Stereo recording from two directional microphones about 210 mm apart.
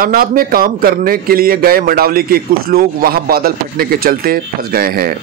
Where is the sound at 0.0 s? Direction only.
45° right (ahead or behind).